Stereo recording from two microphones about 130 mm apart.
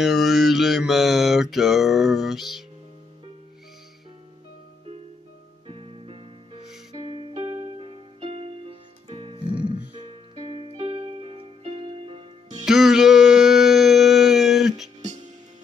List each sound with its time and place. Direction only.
0.0 s mantra: centre (ahead or behind)
5.7 s music: 45° right (ahead or behind)
12.6 s a sound: centre (ahead or behind)